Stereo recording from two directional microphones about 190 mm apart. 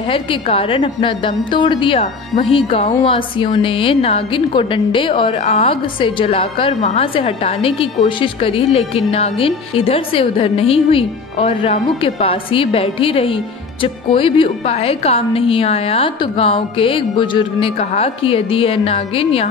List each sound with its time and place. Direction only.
0.1 s speech: 30° left (ahead or behind)